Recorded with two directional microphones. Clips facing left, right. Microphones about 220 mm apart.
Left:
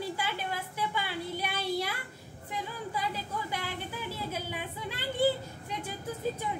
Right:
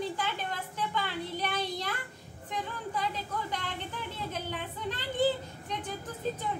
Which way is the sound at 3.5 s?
10° left (ahead or behind).